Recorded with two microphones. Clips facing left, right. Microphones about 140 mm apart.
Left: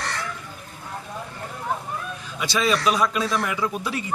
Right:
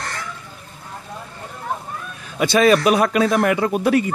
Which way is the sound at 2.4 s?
55° right (ahead or behind).